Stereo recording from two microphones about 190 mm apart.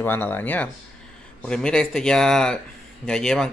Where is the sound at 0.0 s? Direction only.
10° left (ahead or behind).